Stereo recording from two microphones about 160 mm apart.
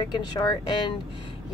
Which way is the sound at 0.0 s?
25° left (ahead or behind).